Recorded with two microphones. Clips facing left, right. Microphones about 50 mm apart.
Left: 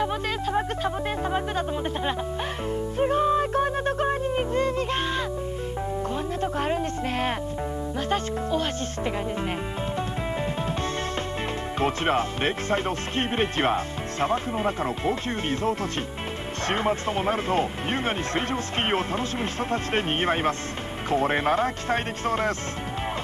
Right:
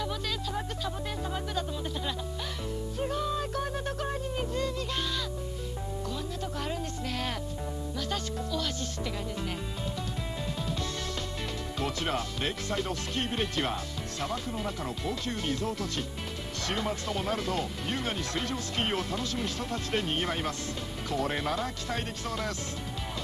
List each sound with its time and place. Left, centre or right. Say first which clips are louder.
0.0 s music: left 8 dB; left
3.0 s music: left 10 dB; left
6.4 s music: left 10 dB; left
8.1 s speech: left 9 dB; left
11.8 s speech: left 8 dB; left